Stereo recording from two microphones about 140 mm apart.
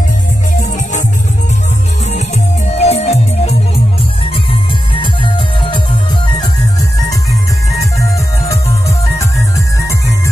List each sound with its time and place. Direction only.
2.1 s music: 55° left (ahead or behind)
5.0 s music: 35° left (ahead or behind)